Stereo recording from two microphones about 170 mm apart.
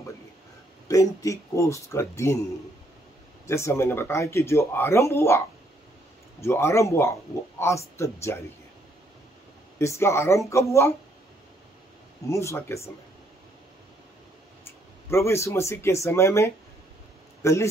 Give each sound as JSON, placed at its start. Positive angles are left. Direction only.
{"t": 0.8, "sound": "speech", "side_deg": 20}
{"t": 3.4, "sound": "speech", "side_deg": 15}
{"t": 6.4, "sound": "speech", "side_deg": 15}
{"t": 9.8, "sound": "speech", "side_deg": 15}
{"t": 12.3, "sound": "speech", "side_deg": 15}
{"t": 14.6, "sound": "a man's voice", "side_deg": 15}